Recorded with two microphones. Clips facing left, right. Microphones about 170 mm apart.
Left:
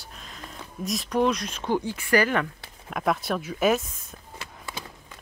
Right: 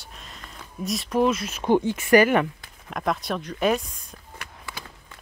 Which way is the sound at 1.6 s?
20° right (ahead or behind).